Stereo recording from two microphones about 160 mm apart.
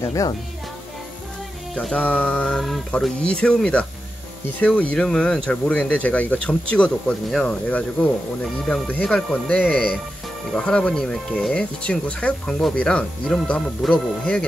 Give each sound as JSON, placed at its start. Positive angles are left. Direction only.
{"t": 0.0, "sound": "speech", "side_deg": 20}
{"t": 1.8, "sound": "speech", "side_deg": 10}